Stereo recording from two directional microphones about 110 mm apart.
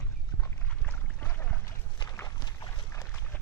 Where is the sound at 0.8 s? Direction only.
15° left (ahead or behind).